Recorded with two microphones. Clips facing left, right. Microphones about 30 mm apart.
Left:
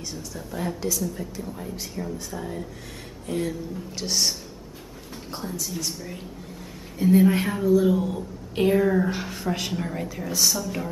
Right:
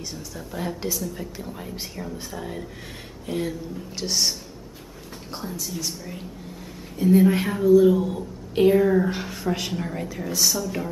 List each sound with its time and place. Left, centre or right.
0.0 s a woman's voice: centre
1.5 s speech: right
2.3 s a woman's voice: centre